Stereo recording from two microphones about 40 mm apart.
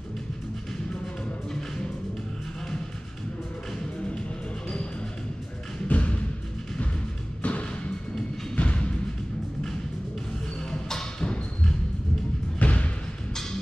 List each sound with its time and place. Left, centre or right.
5.9 s music: left
7.4 s music: left
10.6 s music: centre
12.5 s thump: left